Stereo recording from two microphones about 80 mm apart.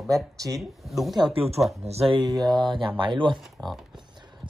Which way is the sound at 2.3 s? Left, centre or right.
Right.